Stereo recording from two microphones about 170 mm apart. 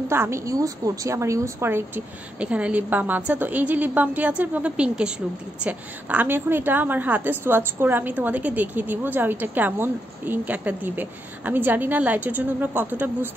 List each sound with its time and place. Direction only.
0.1 s a woman's voice: 15° right (ahead or behind)